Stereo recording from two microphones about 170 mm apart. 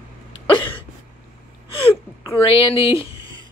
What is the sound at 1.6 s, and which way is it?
Sneeze, 30° left (ahead or behind).